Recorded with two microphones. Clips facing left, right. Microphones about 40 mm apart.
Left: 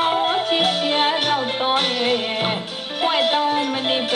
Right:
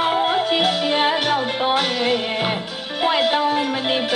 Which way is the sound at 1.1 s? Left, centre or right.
Left.